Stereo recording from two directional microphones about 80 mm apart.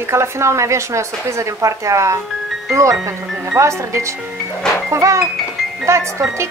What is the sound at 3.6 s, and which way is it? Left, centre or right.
Speech, right.